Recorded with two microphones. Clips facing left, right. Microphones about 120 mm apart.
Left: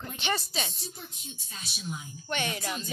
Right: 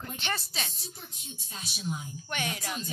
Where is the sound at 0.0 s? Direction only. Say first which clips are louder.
Left 3 dB; 5° left (ahead or behind).